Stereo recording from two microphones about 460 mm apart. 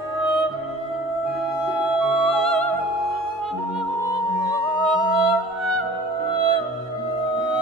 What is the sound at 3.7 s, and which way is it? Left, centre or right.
Music, centre.